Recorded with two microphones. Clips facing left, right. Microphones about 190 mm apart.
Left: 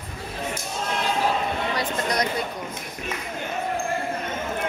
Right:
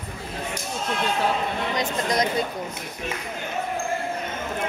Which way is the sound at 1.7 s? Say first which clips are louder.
Right 1 dB; 20° right (ahead or behind).